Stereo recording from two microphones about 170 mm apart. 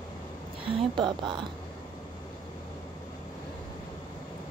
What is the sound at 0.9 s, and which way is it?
Speech, 25° right (ahead or behind).